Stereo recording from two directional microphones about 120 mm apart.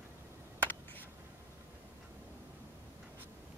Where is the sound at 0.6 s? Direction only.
15° left (ahead or behind).